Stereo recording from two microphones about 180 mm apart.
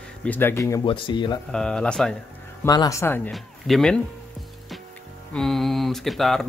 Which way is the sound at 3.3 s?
Centre (ahead or behind).